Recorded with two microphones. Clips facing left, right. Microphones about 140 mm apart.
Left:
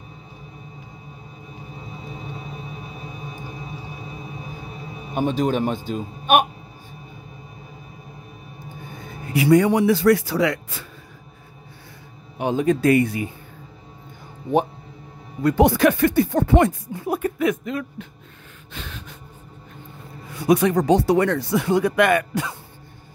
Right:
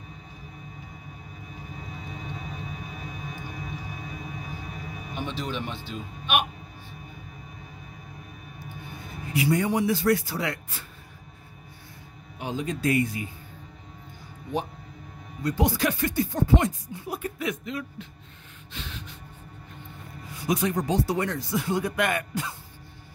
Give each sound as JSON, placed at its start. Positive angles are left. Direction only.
{"t": 1.7, "sound": "music", "side_deg": 30}
{"t": 5.1, "sound": "speech", "side_deg": 45}
{"t": 9.3, "sound": "a man's voice", "side_deg": 70}
{"t": 12.4, "sound": "speech", "side_deg": 60}
{"t": 15.4, "sound": "speech", "side_deg": 65}
{"t": 18.7, "sound": "snort", "side_deg": 50}
{"t": 20.3, "sound": "speech", "side_deg": 65}